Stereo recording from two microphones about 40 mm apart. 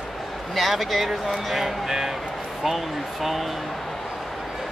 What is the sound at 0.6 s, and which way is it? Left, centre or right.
Speech, centre.